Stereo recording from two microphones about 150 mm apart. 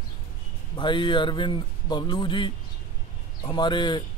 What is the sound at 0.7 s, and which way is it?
A man's voice, 30° left (ahead or behind).